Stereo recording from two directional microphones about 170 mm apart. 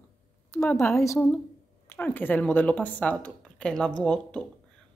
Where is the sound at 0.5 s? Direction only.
15° left (ahead or behind).